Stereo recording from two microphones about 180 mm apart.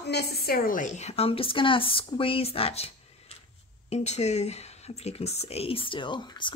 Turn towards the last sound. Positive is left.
turn(degrees=25)  # may be behind; listen again after turning